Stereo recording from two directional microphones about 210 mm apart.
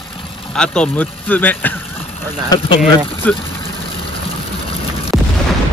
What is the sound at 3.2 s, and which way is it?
Speech, 5° left (ahead or behind).